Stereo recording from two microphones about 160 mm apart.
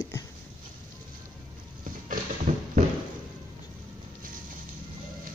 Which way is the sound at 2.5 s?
50° right (ahead or behind).